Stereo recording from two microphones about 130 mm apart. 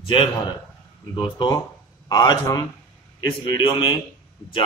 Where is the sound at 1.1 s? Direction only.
35° left (ahead or behind).